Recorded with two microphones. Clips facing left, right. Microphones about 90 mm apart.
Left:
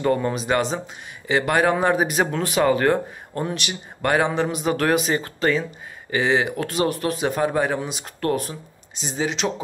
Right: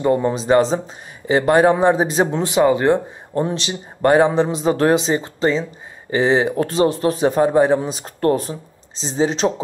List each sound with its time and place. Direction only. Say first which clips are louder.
0.0 s speech: right 4 dB; 20° right (ahead or behind)